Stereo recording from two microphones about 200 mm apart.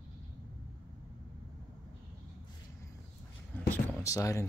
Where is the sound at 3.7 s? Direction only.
10° left (ahead or behind).